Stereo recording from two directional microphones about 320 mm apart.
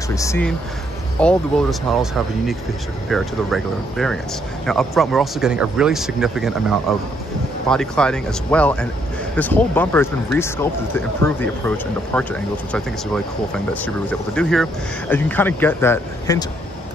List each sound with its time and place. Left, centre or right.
0.1 s speech: centre